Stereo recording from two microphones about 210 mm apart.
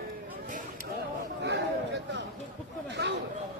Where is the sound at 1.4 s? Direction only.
55° right (ahead or behind).